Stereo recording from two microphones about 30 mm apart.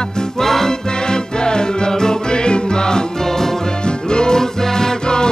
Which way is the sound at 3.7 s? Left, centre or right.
Left.